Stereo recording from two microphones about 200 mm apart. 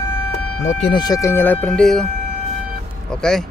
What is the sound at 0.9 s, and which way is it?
Speech, 20° left (ahead or behind).